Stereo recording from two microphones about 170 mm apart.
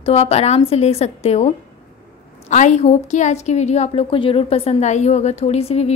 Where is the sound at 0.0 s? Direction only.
40° left (ahead or behind).